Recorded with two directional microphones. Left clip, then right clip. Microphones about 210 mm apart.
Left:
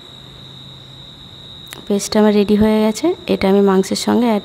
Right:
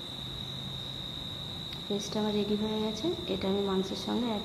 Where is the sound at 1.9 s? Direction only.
55° left (ahead or behind).